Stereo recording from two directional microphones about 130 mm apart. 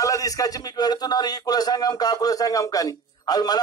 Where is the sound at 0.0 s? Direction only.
25° left (ahead or behind).